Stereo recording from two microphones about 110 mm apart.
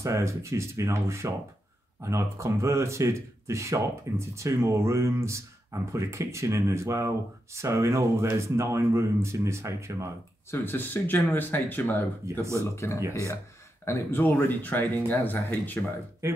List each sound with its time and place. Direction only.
0.0 s speech: 25° right (ahead or behind)
10.5 s speech: 20° left (ahead or behind)
12.3 s speech: 25° right (ahead or behind)
12.7 s speech: 25° left (ahead or behind)
13.0 s speech: 25° right (ahead or behind)
13.8 s speech: 20° left (ahead or behind)